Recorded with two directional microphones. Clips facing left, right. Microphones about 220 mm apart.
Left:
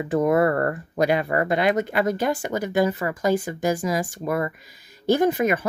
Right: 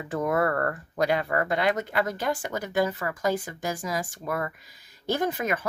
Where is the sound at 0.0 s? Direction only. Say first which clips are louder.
Left 6 dB; 15° left (ahead or behind).